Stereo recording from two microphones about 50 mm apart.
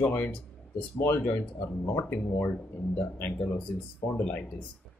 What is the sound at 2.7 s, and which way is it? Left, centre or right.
Speech, left.